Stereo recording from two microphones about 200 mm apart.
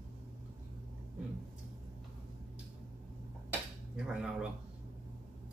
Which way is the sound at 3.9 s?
5° right (ahead or behind).